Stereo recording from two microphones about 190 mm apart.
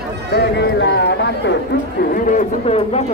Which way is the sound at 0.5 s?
65° left (ahead or behind).